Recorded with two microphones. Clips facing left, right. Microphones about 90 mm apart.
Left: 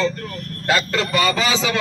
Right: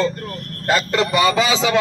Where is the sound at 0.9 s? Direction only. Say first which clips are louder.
Right 3 dB; 20° right (ahead or behind).